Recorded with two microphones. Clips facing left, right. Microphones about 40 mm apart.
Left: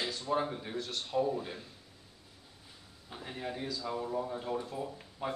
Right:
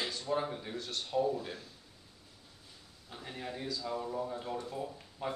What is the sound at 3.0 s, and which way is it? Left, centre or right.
Speech, centre.